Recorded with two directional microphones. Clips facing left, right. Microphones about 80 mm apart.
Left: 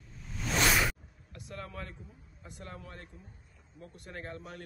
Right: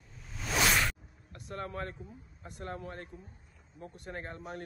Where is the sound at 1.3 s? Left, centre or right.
Right.